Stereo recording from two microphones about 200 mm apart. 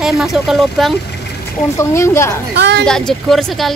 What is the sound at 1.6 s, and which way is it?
Speech, 15° left (ahead or behind).